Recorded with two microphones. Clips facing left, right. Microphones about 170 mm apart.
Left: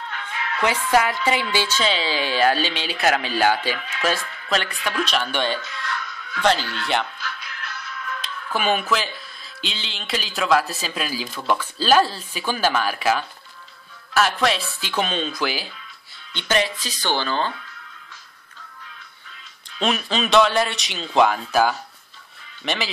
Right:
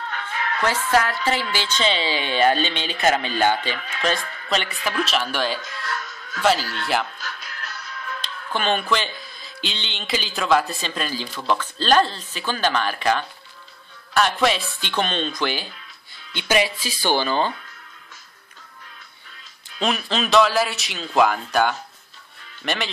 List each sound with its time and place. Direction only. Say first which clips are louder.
0.1 s music: right 2 dB; 40° right (ahead or behind)
0.6 s a woman's voice: left 1 dB; 15° left (ahead or behind)
1.8 s a man's voice: even; centre (ahead or behind)
5.6 s music: even; 45° right (ahead or behind)
6.6 s speech: even; 35° right (ahead or behind)
7.2 s music: left 1 dB; 40° right (ahead or behind)
8.5 s a man's voice: even; 5° left (ahead or behind)
16.3 s speech: right 1 dB; 10° right (ahead or behind)
19.8 s a man's voice: left 1 dB; centre (ahead or behind)